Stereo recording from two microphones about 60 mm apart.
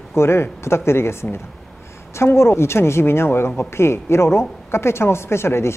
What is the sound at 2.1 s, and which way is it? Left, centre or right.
Speech, left.